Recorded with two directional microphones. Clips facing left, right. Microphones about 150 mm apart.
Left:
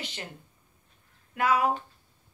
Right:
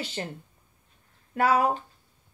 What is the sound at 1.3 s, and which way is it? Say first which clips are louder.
Speech: right 2 dB; 35° right (ahead or behind).